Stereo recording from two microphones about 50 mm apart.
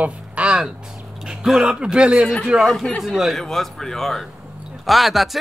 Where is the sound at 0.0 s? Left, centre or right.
Right.